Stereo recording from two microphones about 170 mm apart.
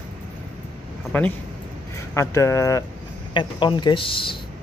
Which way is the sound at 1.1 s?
10° left (ahead or behind).